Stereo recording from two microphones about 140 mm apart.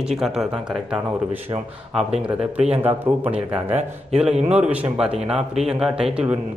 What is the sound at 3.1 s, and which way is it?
Speech, 55° right (ahead or behind).